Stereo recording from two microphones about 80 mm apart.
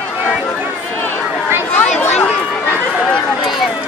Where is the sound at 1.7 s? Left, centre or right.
Left.